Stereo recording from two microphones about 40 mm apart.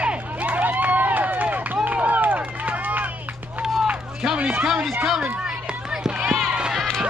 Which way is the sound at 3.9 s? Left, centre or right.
Centre.